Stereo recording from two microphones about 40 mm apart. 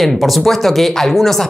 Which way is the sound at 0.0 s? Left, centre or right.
Centre.